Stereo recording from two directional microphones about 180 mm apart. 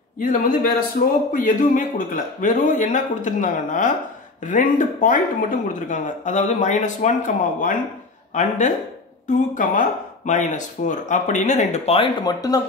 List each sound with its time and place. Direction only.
0.2 s speech: 50° left (ahead or behind); by 12.6 s 20° left (ahead or behind)